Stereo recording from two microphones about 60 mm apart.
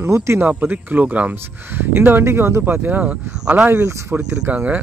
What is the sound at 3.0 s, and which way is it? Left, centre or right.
Speech, right.